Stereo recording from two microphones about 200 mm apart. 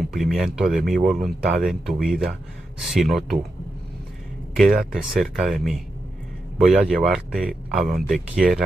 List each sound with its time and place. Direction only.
0.1 s speech: centre (ahead or behind)
4.9 s speech: centre (ahead or behind)
7.7 s speech: 40° right (ahead or behind)
8.1 s speech: centre (ahead or behind)